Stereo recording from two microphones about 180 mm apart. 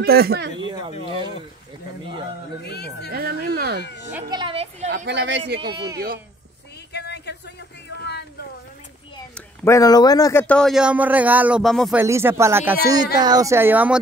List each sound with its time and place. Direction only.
0.0 s speech: 60° right (ahead or behind)
0.7 s a sound: 25° right (ahead or behind)
2.6 s speech: 65° left (ahead or behind)
3.1 s speech: 60° right (ahead or behind)
3.8 s children playing: 70° left (ahead or behind)
4.3 s a sound: 25° right (ahead or behind)
4.8 s speech: 80° right
5.7 s speech: 20° right (ahead or behind)
5.9 s speech: 55° right (ahead or behind)
6.9 s a sound: 70° left (ahead or behind)
9.3 s speech: 15° left (ahead or behind)
10.4 s speech: 5° left (ahead or behind)
12.0 s speech: 15° right (ahead or behind)